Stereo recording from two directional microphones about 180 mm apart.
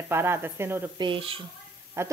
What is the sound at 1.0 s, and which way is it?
Speech, 30° right (ahead or behind).